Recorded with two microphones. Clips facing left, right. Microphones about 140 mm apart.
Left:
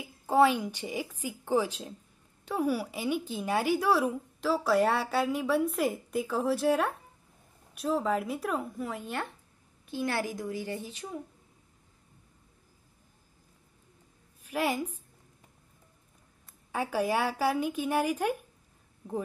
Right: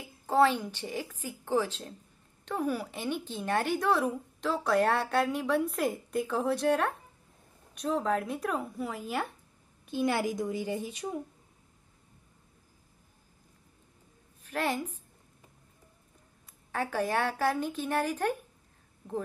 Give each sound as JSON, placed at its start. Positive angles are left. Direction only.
{"t": 0.0, "sound": "a woman's voice", "side_deg": 10}
{"t": 9.8, "sound": "a woman's voice", "side_deg": -15}
{"t": 14.4, "sound": "a woman's voice", "side_deg": 10}
{"t": 16.7, "sound": "a woman's voice", "side_deg": 10}